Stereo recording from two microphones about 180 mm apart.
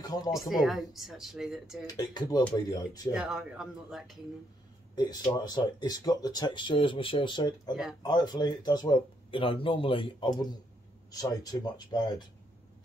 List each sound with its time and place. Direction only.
0.0 s a sound: 20° left (ahead or behind)
0.3 s speech: centre (ahead or behind)
1.9 s speech: 20° left (ahead or behind)
3.1 s speech: 5° right (ahead or behind)
4.9 s speech: 25° left (ahead or behind)